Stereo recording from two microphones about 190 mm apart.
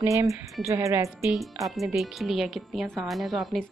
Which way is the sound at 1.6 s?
Centre (ahead or behind).